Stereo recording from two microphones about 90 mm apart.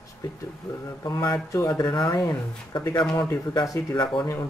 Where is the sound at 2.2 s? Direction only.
50° left (ahead or behind).